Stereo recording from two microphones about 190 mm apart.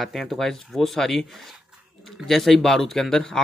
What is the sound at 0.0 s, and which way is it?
Speech, centre (ahead or behind).